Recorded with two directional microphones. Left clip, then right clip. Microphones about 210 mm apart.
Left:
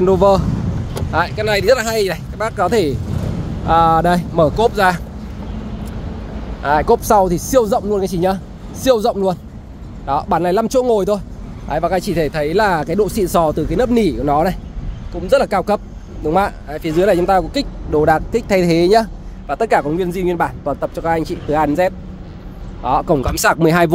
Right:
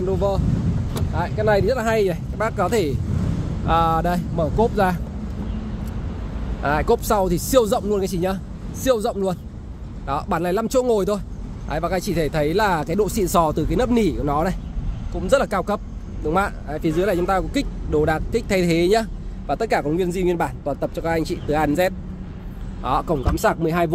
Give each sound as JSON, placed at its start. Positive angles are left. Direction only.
{"t": 0.0, "sound": "speech", "side_deg": 25}
{"t": 2.3, "sound": "speech", "side_deg": 10}
{"t": 6.6, "sound": "speech", "side_deg": 5}
{"t": 23.3, "sound": "speech", "side_deg": 30}